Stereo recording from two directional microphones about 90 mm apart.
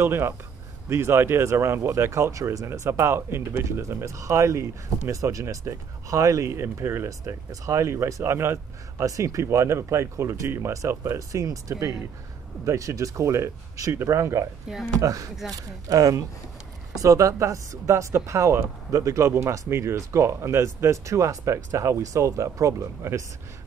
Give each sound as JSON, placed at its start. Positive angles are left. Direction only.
{"t": 0.0, "sound": "speech", "side_deg": -30}
{"t": 9.0, "sound": "speech", "side_deg": -35}